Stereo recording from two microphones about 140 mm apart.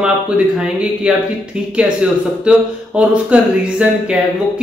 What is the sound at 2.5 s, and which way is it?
Speech, 5° right (ahead or behind).